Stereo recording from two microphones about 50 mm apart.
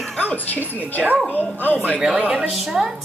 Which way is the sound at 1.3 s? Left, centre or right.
Left.